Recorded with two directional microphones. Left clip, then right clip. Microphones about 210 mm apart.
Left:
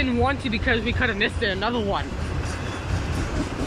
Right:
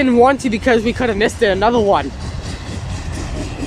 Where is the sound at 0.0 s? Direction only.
35° right (ahead or behind).